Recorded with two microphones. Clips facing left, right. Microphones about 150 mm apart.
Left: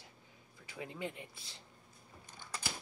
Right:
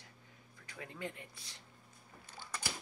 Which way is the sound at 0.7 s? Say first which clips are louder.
Left 2 dB; 20° left (ahead or behind).